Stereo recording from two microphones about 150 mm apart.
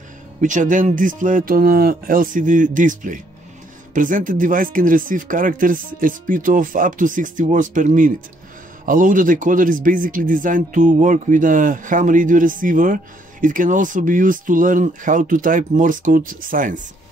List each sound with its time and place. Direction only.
0.4 s speech: 60° right (ahead or behind)